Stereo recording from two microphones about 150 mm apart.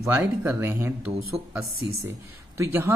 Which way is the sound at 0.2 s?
10° right (ahead or behind).